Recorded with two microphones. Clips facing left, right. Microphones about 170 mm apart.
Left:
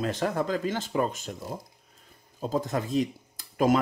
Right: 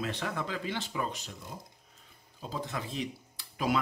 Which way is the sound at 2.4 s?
45° left (ahead or behind).